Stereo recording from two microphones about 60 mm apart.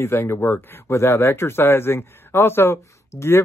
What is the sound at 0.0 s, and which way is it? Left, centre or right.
Speech, left.